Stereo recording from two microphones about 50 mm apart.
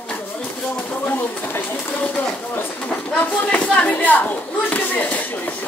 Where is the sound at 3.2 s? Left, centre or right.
Left.